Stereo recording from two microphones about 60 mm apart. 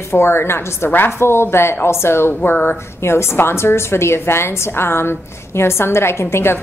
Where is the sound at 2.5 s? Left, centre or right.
Left.